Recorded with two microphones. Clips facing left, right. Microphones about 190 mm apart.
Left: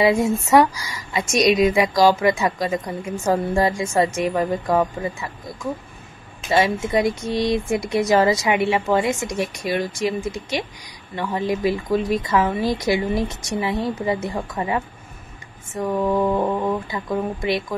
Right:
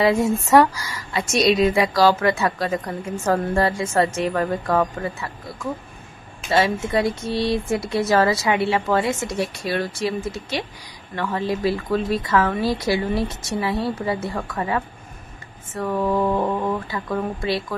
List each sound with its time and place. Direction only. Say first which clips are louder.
0.0 s a woman's voice: left 1 dB; 10° left (ahead or behind)